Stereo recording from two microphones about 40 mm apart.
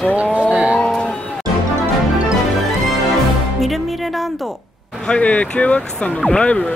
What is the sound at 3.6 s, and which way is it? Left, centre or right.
Music, centre.